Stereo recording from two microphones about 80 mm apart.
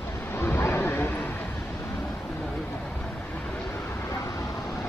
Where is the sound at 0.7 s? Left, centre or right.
Left.